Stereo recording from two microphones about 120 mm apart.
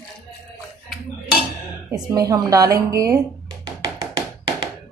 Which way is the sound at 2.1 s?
30° right (ahead or behind).